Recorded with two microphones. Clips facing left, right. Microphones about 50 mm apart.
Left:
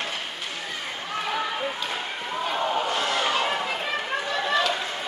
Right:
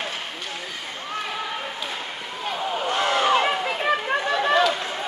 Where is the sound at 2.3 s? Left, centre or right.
Centre.